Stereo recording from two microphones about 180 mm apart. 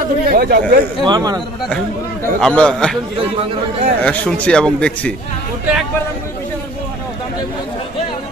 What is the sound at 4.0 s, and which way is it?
Speech, 5° left (ahead or behind).